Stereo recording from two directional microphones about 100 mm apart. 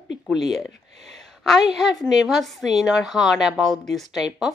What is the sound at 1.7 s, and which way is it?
A woman's voice, centre (ahead or behind).